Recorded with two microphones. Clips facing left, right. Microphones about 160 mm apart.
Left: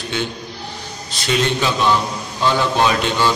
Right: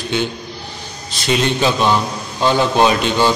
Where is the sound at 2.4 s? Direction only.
25° right (ahead or behind).